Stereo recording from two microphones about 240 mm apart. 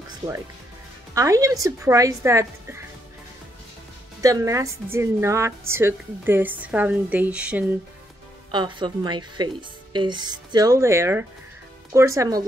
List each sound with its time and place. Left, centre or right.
1.1 s a woman's voice: centre
4.2 s a woman's voice: centre
8.5 s a woman's voice: centre